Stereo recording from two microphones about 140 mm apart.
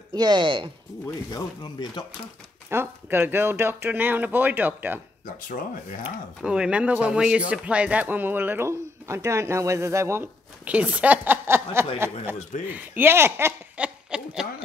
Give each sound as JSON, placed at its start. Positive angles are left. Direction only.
{"t": 0.1, "sound": "speech", "side_deg": -30}
{"t": 1.0, "sound": "speech", "side_deg": 30}
{"t": 2.7, "sound": "speech", "side_deg": -15}
{"t": 5.2, "sound": "speech", "side_deg": 70}
{"t": 6.0, "sound": "speech", "side_deg": -5}
{"t": 12.6, "sound": "a sound", "side_deg": -15}